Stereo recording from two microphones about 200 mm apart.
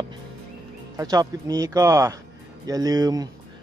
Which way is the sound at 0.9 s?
20° right (ahead or behind).